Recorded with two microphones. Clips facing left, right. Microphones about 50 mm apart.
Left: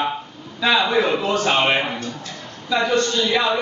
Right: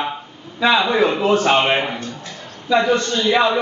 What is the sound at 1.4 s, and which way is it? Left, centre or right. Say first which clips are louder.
A man's voice: right 2 dB; centre.